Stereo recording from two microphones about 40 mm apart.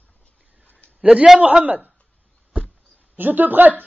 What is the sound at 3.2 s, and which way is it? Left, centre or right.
Speech, right.